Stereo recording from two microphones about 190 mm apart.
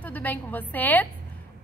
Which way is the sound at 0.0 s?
10° left (ahead or behind).